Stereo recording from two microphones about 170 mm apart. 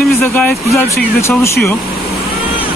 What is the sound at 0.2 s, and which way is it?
Speech, 10° left (ahead or behind).